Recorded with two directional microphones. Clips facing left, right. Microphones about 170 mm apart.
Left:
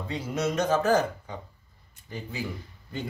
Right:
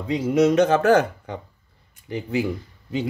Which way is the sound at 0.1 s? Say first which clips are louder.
Right 11 dB; 90° right.